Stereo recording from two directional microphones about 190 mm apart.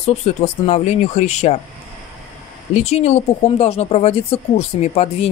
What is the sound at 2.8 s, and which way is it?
Speech, 35° left (ahead or behind).